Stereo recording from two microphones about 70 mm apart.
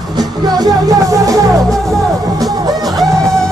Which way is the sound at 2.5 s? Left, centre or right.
Right.